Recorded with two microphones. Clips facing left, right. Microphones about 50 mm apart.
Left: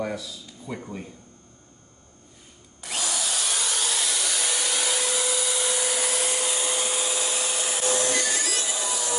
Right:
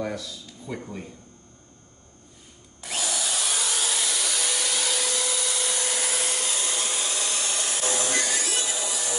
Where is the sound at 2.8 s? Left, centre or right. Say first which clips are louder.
Even; centre.